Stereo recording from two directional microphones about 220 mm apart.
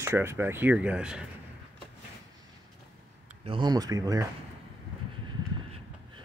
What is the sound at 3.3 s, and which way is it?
Speech, 25° right (ahead or behind).